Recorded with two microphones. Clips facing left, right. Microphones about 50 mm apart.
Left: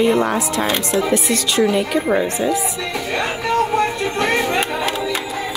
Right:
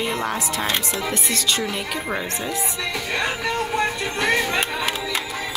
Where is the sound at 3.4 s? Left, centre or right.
Centre.